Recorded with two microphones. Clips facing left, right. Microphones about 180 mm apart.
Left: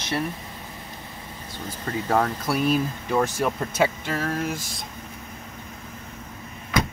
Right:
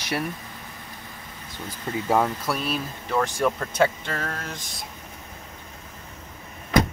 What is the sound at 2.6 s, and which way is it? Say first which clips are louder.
Speech: left 6 dB; 10° left (ahead or behind).